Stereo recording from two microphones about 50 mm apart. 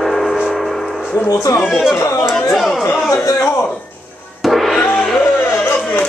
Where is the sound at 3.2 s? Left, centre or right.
Left.